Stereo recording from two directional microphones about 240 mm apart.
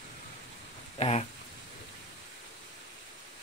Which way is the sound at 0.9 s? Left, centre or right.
Left.